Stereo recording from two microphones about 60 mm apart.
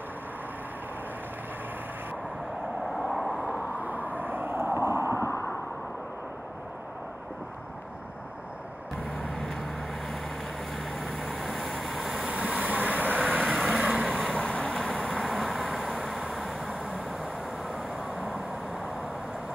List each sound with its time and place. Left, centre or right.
2.8 s vehicle: centre
3.3 s vehicle: right
5.1 s a sound: left
9.2 s vehicle: centre
11.1 s vehicle: right
14.3 s vehicle: centre
15.1 s vehicle: centre
16.3 s vehicle: centre
16.6 s vehicle: right